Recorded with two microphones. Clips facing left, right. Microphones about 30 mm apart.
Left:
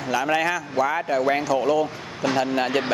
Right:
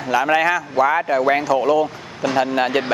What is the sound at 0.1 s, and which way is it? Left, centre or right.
Speech, centre.